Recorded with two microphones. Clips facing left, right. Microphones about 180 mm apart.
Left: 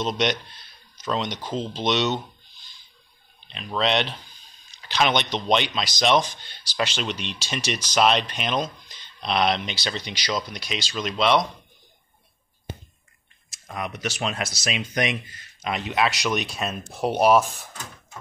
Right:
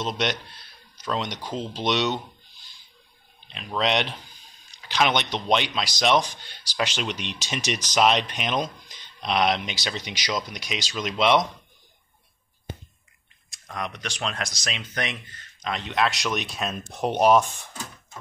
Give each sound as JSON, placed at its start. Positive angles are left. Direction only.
{"t": 0.0, "sound": "speech", "side_deg": -5}
{"t": 3.4, "sound": "speech", "side_deg": -5}
{"t": 13.5, "sound": "speech", "side_deg": 5}